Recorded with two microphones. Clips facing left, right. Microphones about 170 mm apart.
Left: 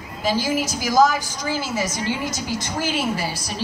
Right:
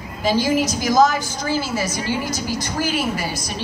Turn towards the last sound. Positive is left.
turn(degrees=30)  # may be behind; listen again after turning